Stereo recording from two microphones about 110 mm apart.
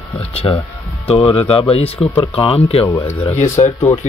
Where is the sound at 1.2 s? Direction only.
70° left (ahead or behind).